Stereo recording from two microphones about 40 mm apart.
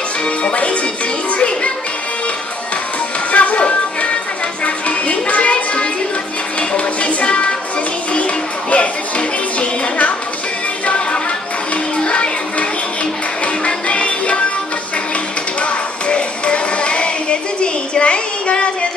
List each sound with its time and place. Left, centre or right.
0.4 s music: left
3.3 s music: left
12.0 s music: left
13.7 s music: left
15.6 s music: left